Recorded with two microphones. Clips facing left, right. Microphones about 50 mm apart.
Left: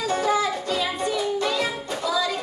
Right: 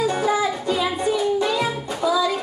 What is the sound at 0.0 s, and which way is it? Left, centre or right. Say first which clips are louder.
Music: right 2 dB; centre.